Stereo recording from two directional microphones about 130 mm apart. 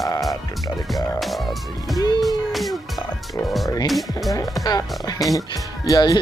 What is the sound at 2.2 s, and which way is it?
Music, centre (ahead or behind).